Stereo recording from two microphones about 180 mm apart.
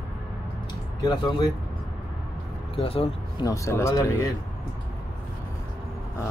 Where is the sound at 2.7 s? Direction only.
30° left (ahead or behind).